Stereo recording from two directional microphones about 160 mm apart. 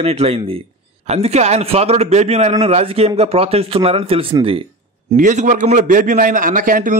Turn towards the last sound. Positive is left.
turn(degrees=-60)  # may be behind; listen again after turning